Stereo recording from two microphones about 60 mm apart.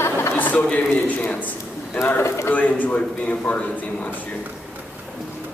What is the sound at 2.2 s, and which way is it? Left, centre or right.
Speech, left.